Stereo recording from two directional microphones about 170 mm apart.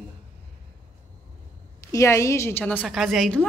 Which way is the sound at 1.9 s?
15° left (ahead or behind).